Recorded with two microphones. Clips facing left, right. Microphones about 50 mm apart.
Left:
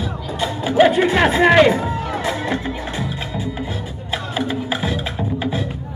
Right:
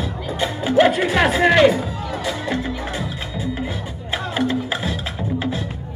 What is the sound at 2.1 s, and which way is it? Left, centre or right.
Music, left.